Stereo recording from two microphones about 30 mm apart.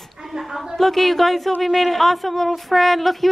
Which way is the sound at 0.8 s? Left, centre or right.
Centre.